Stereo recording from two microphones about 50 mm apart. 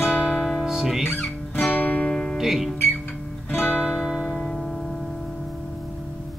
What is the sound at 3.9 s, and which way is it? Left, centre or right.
Music, centre.